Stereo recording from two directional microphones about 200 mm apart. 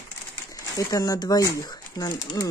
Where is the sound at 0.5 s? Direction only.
20° left (ahead or behind).